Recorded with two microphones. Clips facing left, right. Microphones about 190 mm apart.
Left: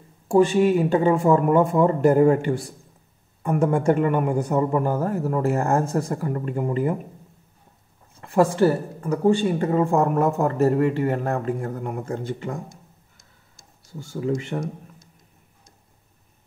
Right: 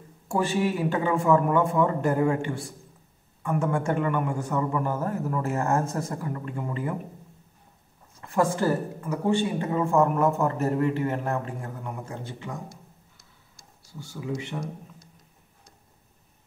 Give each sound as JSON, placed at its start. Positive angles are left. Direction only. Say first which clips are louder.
{"t": 0.3, "sound": "a man's voice", "louder": "left 8 dB", "side_deg": 30}
{"t": 8.2, "sound": "a man's voice", "louder": "left 6 dB", "side_deg": 30}
{"t": 11.3, "sound": "speech", "louder": "left 6 dB", "side_deg": 50}
{"t": 13.2, "sound": "a sound", "louder": "left 1 dB", "side_deg": 50}